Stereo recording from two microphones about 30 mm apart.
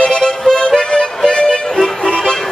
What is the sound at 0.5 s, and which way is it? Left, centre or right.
Music, left.